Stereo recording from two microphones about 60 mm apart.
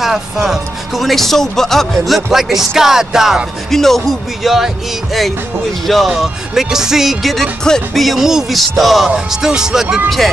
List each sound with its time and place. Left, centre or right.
0.0 s speech: centre
2.3 s music: centre
3.7 s speech: centre
5.9 s speech: centre
9.3 s music: centre
10.0 s speech: centre